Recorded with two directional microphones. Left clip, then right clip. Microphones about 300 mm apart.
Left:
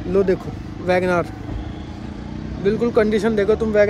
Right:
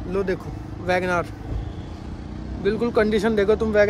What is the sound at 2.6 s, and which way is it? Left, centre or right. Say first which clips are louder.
Speech: left 3 dB; centre.